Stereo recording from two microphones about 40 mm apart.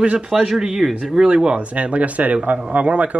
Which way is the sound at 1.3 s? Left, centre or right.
Right.